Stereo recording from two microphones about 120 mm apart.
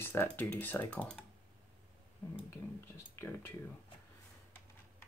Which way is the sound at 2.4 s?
20° left (ahead or behind).